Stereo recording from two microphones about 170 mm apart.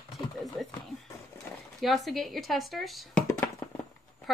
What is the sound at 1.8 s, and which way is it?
Speech, centre (ahead or behind).